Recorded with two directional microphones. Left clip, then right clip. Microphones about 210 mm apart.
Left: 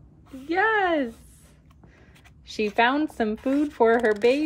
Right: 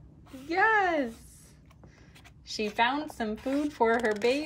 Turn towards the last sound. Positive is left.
turn(degrees=0)  # may be behind; listen again after turning